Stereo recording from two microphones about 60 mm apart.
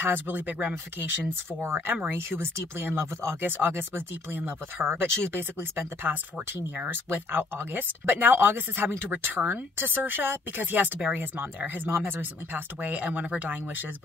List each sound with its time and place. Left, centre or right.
0.0 s speech: right
1.6 s speech: right
11.9 s speech: right